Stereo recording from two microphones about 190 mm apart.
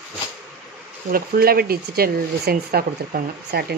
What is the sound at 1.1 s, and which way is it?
Speech, 50° right (ahead or behind).